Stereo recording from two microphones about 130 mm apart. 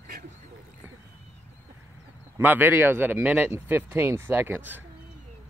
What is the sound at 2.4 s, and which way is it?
Speech, 15° right (ahead or behind).